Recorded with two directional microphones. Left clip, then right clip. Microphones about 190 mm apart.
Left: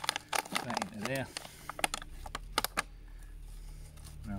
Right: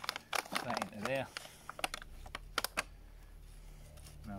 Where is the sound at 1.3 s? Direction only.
5° left (ahead or behind).